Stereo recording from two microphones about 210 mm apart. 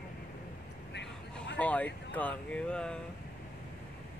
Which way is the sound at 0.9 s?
55° left (ahead or behind).